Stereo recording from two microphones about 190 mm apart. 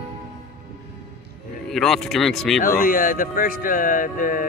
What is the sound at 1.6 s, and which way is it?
Speech, centre (ahead or behind).